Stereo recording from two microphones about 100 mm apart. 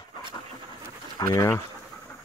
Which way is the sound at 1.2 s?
30° left (ahead or behind).